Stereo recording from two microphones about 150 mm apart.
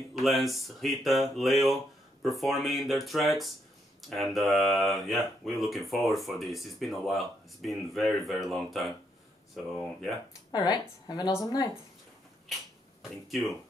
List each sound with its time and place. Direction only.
0.2 s speech: centre (ahead or behind)
10.5 s speech: 25° left (ahead or behind)
12.5 s a sound: centre (ahead or behind)